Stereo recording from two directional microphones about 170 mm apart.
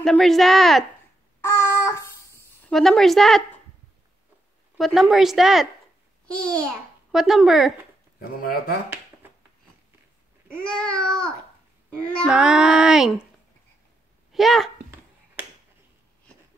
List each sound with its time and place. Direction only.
0.0 s speech: centre (ahead or behind)
1.4 s a sound: 15° left (ahead or behind)
2.7 s speech: centre (ahead or behind)
4.7 s a child's voice: centre (ahead or behind)
8.2 s speech: 60° left (ahead or behind)
10.6 s speech: 5° left (ahead or behind)
14.3 s speech: centre (ahead or behind)